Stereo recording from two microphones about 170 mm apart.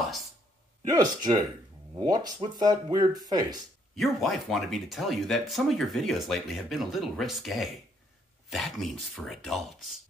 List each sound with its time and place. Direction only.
0.8 s speech: 25° right (ahead or behind)
3.9 s speech: centre (ahead or behind)